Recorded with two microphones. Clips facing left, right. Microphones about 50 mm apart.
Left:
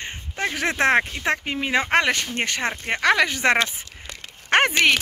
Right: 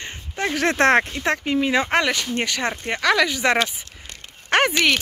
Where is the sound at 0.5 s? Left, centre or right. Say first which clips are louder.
Right 3 dB; centre.